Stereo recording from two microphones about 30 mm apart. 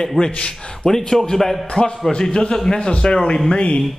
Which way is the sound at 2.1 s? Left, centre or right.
Left.